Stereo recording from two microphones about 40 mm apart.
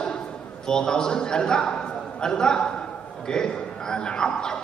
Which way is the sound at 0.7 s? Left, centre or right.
Centre.